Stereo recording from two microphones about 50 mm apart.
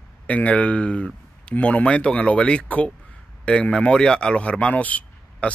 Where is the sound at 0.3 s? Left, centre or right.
Left.